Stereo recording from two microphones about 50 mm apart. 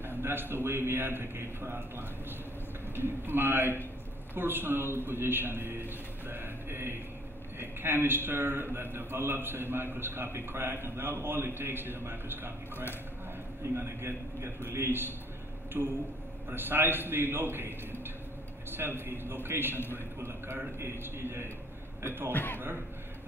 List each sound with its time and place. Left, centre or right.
0.0 s a man's voice: right
13.7 s a man's voice: right
22.3 s a man's voice: left